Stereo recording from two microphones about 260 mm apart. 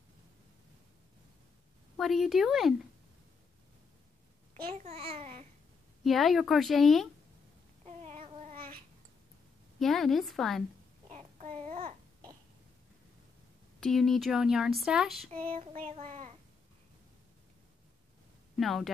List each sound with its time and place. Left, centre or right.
2.0 s speech: centre
4.6 s a child's voice: right
6.0 s speech: centre
7.8 s child singing: right
9.8 s speech: centre
11.1 s babbling: right
13.7 s speech: centre
15.4 s child singing: right
18.6 s speech: centre